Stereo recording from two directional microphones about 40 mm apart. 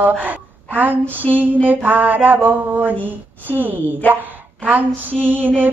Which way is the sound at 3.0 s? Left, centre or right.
Right.